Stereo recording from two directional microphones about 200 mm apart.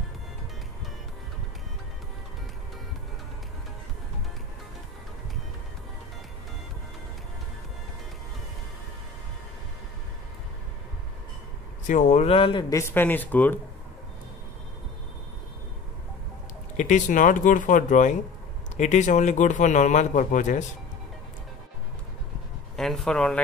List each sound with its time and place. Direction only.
11.9 s speech: 40° left (ahead or behind); by 13.6 s 10° left (ahead or behind)
16.7 s a man's voice: 40° left (ahead or behind)
22.8 s speech: centre (ahead or behind)